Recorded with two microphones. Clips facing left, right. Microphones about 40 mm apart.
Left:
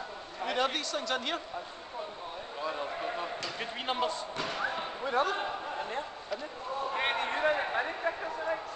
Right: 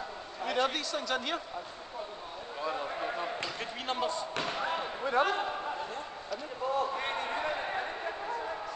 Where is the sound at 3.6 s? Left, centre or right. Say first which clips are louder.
Left 4 dB; centre.